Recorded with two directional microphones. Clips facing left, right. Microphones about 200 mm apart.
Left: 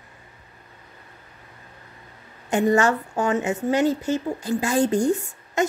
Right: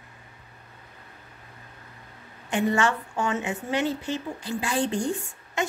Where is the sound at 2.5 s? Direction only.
40° left (ahead or behind).